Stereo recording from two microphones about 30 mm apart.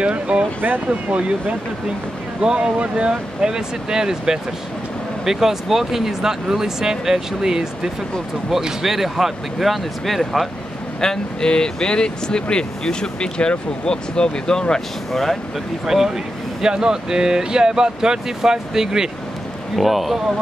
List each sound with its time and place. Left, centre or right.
0.0 s speech: right
2.4 s speech: right; by 10.5 s centre
11.0 s speech: left
15.8 s speech: centre
19.7 s speech: centre